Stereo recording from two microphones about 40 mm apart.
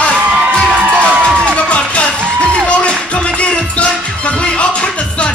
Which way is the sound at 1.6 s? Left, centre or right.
Left.